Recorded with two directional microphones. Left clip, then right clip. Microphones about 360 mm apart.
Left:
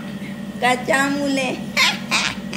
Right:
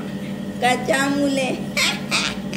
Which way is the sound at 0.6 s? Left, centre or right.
Centre.